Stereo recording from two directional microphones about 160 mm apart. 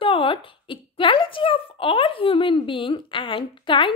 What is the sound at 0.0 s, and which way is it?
Speech, 35° left (ahead or behind).